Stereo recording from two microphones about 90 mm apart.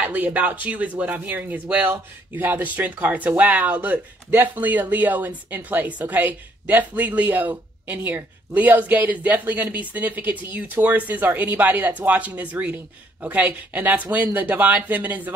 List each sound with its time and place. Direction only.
0.0 s a woman's voice: 20° right (ahead or behind)